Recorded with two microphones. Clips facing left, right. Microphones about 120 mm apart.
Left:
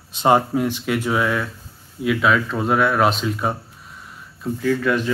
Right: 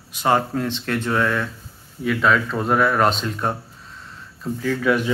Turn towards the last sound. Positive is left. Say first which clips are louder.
# right 1 dB
turn(degrees=-5)  # may be behind; listen again after turning